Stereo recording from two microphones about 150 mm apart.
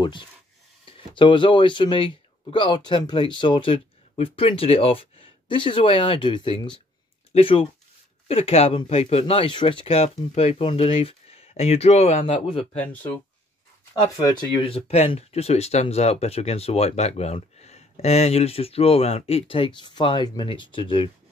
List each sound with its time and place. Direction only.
0.0 s speech: 30° left (ahead or behind)
12.7 s speech: 10° left (ahead or behind)
14.1 s speech: 25° left (ahead or behind)
14.8 s speech: 45° left (ahead or behind)